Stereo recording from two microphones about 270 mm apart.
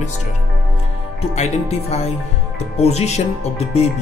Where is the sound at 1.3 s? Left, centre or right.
Left.